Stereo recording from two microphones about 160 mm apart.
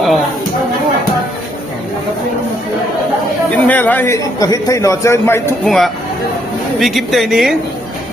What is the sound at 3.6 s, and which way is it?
A man's voice, 10° left (ahead or behind).